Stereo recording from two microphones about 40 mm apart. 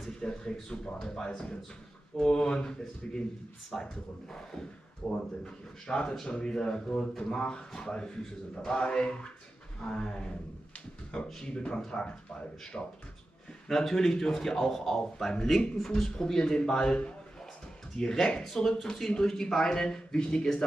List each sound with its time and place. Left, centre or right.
0.2 s a man's voice: left
5.4 s speech: left
11.4 s speech: left
13.7 s a man's voice: centre
18.0 s a man's voice: centre